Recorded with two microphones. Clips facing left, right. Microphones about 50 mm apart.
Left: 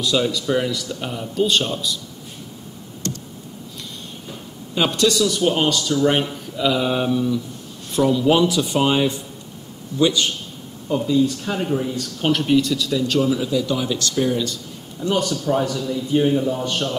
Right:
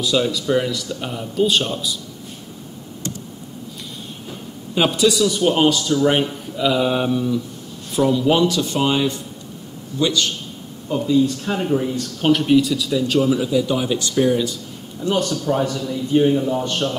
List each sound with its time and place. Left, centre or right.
0.0 s speech: centre
4.7 s speech: centre
10.9 s a man's voice: centre
15.0 s speech: centre
15.6 s a man's voice: right
16.1 s speech: centre